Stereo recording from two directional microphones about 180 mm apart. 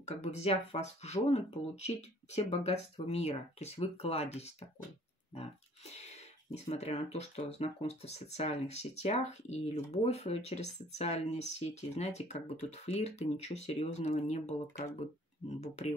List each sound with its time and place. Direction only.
0.0 s speech: 40° left (ahead or behind)